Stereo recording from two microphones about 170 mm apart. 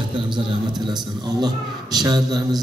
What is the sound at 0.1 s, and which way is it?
A man's voice, 30° right (ahead or behind).